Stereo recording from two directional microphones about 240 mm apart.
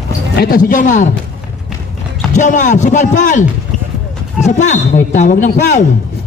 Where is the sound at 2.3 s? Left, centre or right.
Left.